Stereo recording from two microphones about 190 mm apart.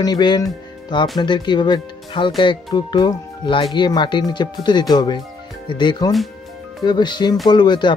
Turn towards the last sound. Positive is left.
turn(degrees=25)  # may be behind; listen again after turning